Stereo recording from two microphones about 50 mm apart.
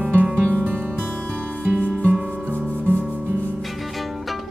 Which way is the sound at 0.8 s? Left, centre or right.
Left.